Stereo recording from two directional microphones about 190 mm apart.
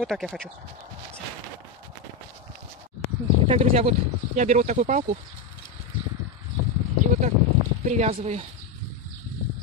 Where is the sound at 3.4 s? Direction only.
30° right (ahead or behind).